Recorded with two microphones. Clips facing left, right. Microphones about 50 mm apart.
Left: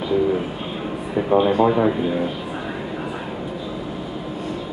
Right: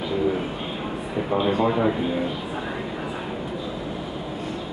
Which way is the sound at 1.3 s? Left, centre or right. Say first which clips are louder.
Left 5 dB; left.